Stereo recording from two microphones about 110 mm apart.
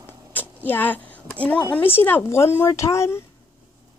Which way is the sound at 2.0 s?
20° left (ahead or behind).